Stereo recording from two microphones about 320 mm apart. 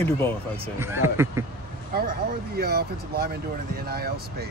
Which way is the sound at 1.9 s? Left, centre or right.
Right.